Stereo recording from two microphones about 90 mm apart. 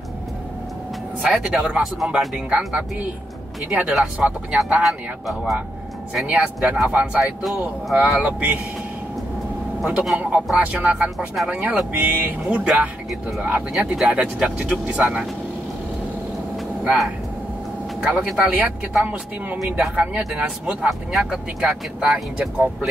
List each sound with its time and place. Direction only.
1.3 s speech: 5° right (ahead or behind)
3.9 s speech: 5° right (ahead or behind)
6.2 s speech: 15° right (ahead or behind)
9.8 s speech: 10° right (ahead or behind)
16.8 s speech: 5° right (ahead or behind)
19.8 s speech: 5° right (ahead or behind)